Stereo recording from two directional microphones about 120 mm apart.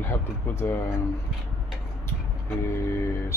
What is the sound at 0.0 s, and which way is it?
Speech, 20° left (ahead or behind).